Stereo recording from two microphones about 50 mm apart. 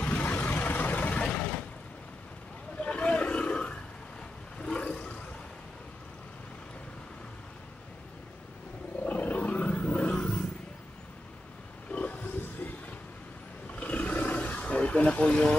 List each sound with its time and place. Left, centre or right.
0.0 s vehicle: left
2.8 s a sound: left
4.6 s vehicle: centre
9.0 s roaring cats: left
11.9 s a sound: left
13.7 s roar: left